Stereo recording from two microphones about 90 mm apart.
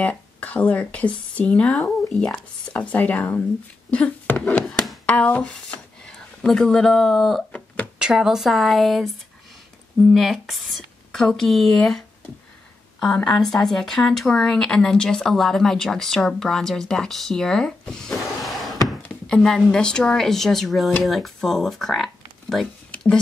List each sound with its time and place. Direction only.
0.0 s speech: 15° left (ahead or behind)
8.0 s speech: 5° right (ahead or behind)
10.1 s speech: centre (ahead or behind)
13.0 s speech: 5° left (ahead or behind)